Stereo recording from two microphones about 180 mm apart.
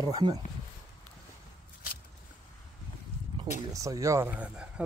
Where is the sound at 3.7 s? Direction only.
20° right (ahead or behind).